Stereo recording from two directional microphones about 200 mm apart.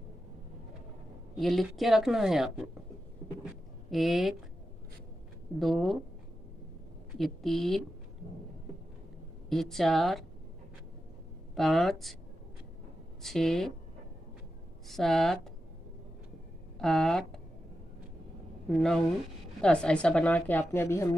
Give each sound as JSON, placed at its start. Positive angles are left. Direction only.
{"t": 1.3, "sound": "a woman's voice", "side_deg": 0}
{"t": 3.9, "sound": "a woman's voice", "side_deg": 0}
{"t": 5.6, "sound": "a woman's voice", "side_deg": 0}
{"t": 7.2, "sound": "a woman's voice", "side_deg": 0}
{"t": 9.5, "sound": "a woman's voice", "side_deg": 0}
{"t": 11.5, "sound": "a woman's voice", "side_deg": 0}
{"t": 13.2, "sound": "a woman's voice", "side_deg": 0}
{"t": 14.9, "sound": "a woman's voice", "side_deg": 0}
{"t": 16.7, "sound": "speech", "side_deg": 0}
{"t": 18.7, "sound": "a woman's voice", "side_deg": 0}